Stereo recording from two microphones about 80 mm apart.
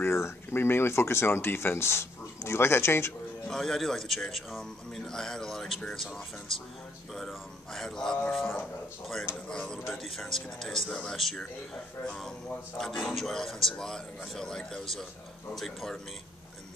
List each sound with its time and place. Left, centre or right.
0.0 s speech: left
3.4 s a man's voice: centre